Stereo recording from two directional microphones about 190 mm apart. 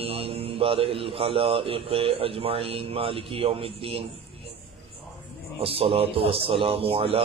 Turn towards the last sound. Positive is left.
turn(degrees=-30)  # may be behind; listen again after turning